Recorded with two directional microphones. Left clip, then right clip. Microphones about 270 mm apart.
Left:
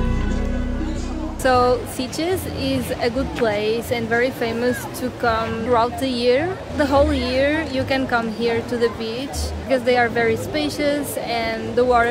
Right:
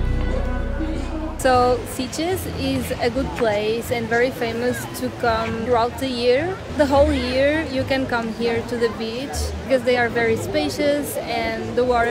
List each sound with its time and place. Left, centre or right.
1.4 s a woman's voice: centre